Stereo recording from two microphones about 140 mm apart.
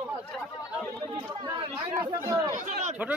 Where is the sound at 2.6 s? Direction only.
60° right (ahead or behind).